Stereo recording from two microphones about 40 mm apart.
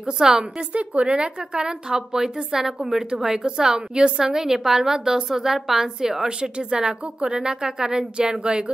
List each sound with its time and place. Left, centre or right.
0.0 s a woman's voice: centre
0.6 s a woman's voice: right; by 6.2 s centre
6.2 s a woman's voice: right